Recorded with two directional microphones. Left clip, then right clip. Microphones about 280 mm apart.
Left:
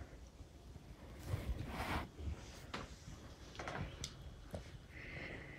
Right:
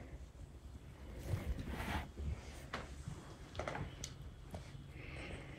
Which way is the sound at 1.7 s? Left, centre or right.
Left.